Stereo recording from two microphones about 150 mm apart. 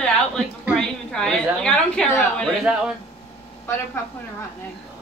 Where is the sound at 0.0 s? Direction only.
5° left (ahead or behind).